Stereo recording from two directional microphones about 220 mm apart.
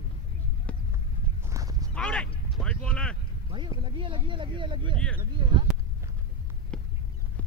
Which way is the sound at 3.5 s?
20° right (ahead or behind).